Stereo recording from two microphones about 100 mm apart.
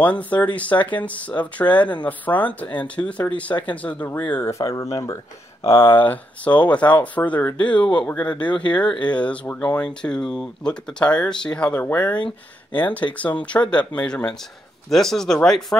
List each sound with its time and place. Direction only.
0.0 s speech: 15° left (ahead or behind)
4.5 s speech: 30° left (ahead or behind)
5.9 s speech: 15° left (ahead or behind)
9.8 s speech: 5° left (ahead or behind)